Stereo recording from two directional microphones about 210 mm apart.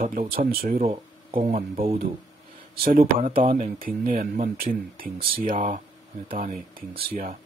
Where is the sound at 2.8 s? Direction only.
40° right (ahead or behind).